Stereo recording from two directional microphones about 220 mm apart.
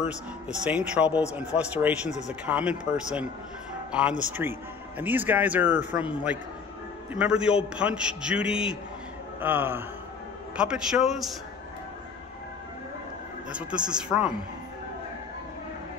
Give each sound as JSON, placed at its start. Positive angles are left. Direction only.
{"t": 0.0, "sound": "a man's voice", "side_deg": -5}
{"t": 2.0, "sound": "speech", "side_deg": 30}
{"t": 2.4, "sound": "a man's voice", "side_deg": -5}
{"t": 13.5, "sound": "a man's voice", "side_deg": -5}